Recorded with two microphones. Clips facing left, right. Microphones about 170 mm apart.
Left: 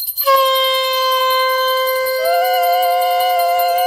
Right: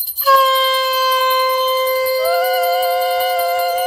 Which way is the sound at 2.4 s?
5° left (ahead or behind).